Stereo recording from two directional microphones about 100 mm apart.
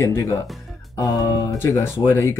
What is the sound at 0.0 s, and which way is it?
Speech, 35° left (ahead or behind).